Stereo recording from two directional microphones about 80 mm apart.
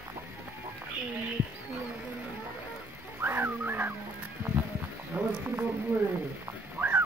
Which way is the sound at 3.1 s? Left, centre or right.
Right.